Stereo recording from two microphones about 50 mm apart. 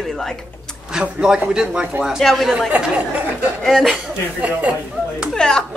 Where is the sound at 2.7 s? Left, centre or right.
Right.